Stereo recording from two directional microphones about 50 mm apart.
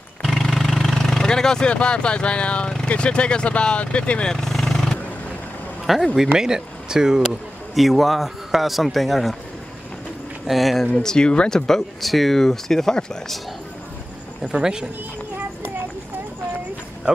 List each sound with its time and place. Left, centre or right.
0.2 s vehicle: centre
0.9 s speech: centre
4.3 s vehicle: centre
6.1 s speech: centre
10.4 s speech: centre
11.0 s speech: centre
14.6 s speech: centre